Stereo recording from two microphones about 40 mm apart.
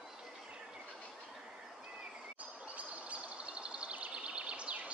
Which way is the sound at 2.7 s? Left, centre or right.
Right.